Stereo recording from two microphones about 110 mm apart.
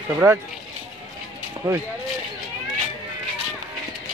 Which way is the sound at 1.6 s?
30° right (ahead or behind).